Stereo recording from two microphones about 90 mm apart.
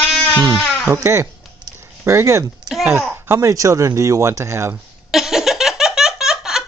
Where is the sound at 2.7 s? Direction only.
50° right (ahead or behind).